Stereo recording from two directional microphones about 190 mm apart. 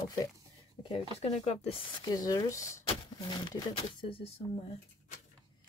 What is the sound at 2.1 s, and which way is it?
Speech, 20° left (ahead or behind).